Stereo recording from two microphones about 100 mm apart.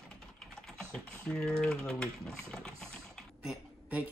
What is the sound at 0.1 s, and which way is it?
Typing, 5° left (ahead or behind).